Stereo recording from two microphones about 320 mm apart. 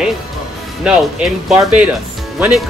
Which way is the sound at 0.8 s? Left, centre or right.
Centre.